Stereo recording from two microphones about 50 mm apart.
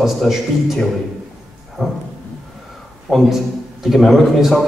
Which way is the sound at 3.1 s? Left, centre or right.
Centre.